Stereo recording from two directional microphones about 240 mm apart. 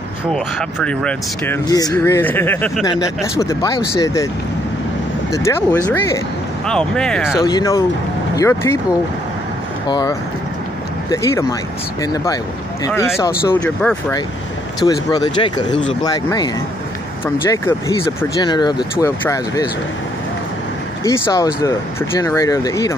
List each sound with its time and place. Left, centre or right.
0.3 s speech: centre
5.3 s speech: centre
7.4 s speech: centre
9.8 s speech: centre
14.9 s speech: centre
17.5 s speech: centre
21.0 s speech: centre